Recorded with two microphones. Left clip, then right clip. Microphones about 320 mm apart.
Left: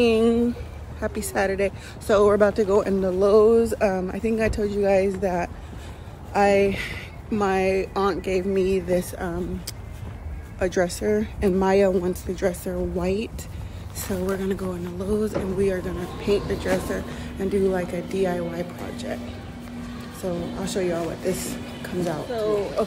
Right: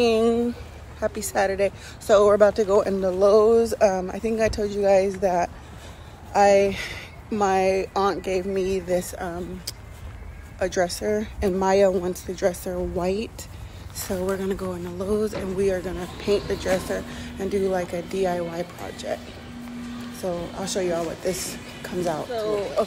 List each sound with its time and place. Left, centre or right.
0.0 s speech: centre
20.2 s speech: centre